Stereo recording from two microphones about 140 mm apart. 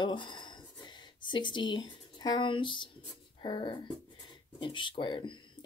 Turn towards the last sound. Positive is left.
turn(degrees=35)  # may be behind; listen again after turning